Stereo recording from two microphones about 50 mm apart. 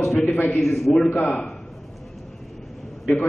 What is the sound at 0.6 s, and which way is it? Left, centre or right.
Speech, centre.